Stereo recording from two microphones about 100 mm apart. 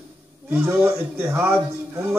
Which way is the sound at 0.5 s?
20° right (ahead or behind).